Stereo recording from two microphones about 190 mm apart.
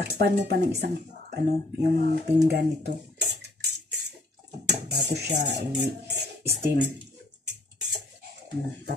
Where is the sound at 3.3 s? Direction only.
60° right (ahead or behind).